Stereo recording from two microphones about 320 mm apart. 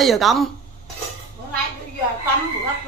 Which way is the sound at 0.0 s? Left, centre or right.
Centre.